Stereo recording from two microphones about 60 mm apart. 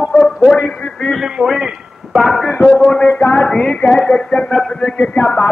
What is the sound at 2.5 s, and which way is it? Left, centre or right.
A man's voice, centre.